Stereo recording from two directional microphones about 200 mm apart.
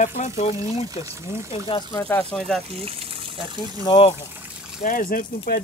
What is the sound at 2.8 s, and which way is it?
Speech, 25° right (ahead or behind).